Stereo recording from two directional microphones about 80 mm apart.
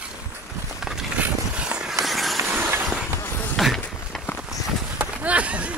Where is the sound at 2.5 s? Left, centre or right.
Right.